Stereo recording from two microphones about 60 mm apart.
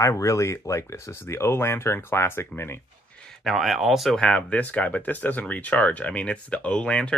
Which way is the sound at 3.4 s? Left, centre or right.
Centre.